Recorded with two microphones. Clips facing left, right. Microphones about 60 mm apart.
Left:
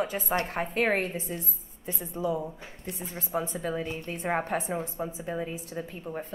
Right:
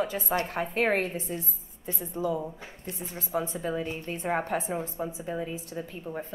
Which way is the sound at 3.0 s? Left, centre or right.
Left.